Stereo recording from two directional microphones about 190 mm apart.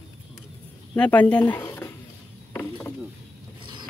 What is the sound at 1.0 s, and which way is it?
Speech, 5° left (ahead or behind).